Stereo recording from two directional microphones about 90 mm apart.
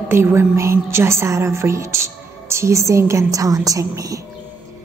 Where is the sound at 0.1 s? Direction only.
25° right (ahead or behind).